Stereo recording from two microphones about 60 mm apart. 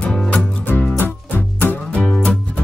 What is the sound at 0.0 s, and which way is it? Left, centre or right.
Music, centre.